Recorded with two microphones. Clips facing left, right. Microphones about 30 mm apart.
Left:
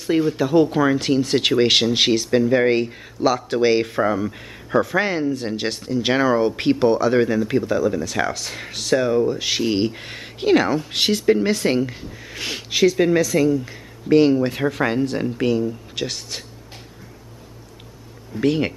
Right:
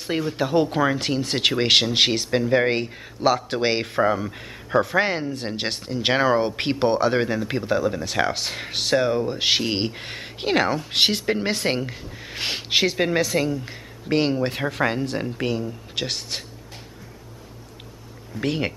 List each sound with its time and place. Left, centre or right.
0.4 s speech: centre
11.9 s speech: centre
12.2 s speech: centre
14.6 s speech: centre
15.9 s speech: centre
18.4 s speech: centre